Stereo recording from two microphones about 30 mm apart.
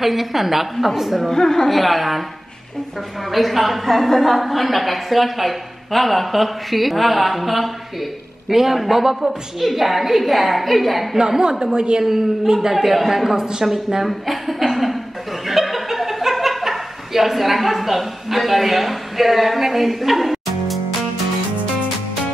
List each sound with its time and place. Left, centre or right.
0.0 s a woman's voice: centre
1.3 s a woman's voice: centre
1.7 s a woman's voice: centre
3.3 s a woman's voice: centre
11.1 s a woman's voice: centre
12.0 s a woman's voice: centre
15.4 s chuckle: centre